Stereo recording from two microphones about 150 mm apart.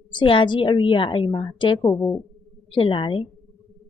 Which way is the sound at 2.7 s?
35° left (ahead or behind).